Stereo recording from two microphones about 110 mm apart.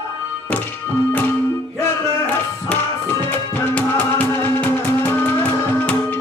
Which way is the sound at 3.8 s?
15° left (ahead or behind).